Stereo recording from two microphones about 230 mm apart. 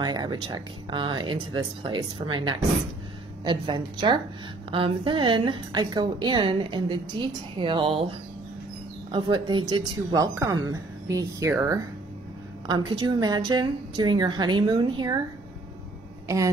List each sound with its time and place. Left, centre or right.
0.0 s a woman's voice: centre